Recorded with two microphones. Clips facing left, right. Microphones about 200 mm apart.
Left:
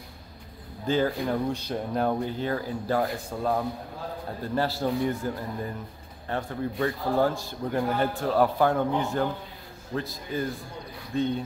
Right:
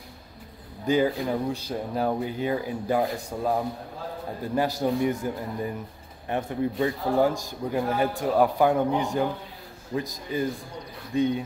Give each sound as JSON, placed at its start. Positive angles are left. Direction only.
{"t": 0.8, "sound": "a man's voice", "side_deg": -15}